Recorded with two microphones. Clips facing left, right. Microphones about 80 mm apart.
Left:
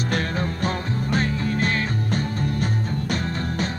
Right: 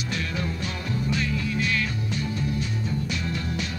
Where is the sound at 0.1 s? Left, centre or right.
Left.